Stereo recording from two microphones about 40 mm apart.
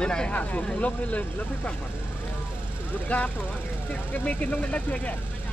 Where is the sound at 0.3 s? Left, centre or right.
Left.